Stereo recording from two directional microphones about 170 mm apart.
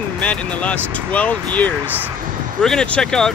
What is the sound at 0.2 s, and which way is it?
Speech, 5° left (ahead or behind).